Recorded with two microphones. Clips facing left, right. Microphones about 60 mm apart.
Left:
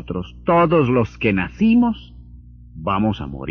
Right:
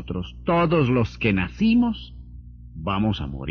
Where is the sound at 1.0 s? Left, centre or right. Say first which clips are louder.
Left 4 dB; left.